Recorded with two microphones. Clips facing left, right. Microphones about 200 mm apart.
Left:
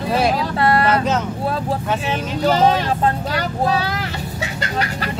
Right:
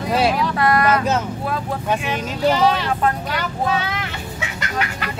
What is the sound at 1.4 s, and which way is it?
Speech, 30° left (ahead or behind).